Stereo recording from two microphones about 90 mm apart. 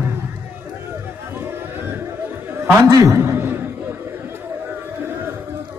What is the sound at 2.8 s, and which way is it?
Speech, 35° right (ahead or behind).